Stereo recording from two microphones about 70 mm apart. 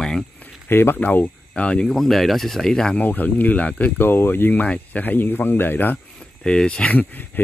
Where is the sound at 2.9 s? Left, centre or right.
Left.